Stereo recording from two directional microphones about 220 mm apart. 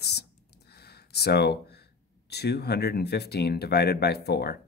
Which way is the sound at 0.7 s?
45° left (ahead or behind).